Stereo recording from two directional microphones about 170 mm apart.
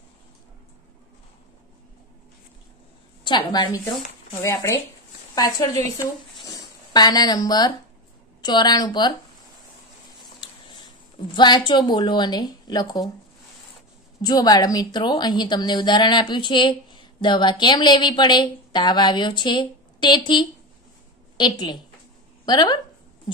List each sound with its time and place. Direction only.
3.3 s a woman's voice: 25° left (ahead or behind)
5.3 s a woman's voice: 20° left (ahead or behind)
6.4 s a sound: 25° left (ahead or behind)
8.4 s a woman's voice: 25° left (ahead or behind)
11.3 s a woman's voice: 25° left (ahead or behind)
14.2 s a woman's voice: 20° left (ahead or behind)